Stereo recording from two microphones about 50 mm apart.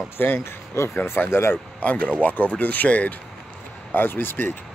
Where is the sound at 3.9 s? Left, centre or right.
Left.